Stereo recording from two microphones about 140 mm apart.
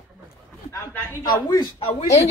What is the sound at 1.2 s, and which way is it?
Speech, 30° left (ahead or behind).